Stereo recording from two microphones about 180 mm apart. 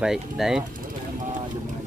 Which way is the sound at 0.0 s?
5° right (ahead or behind).